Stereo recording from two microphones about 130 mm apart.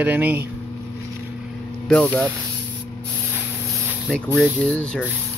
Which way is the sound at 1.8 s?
10° left (ahead or behind).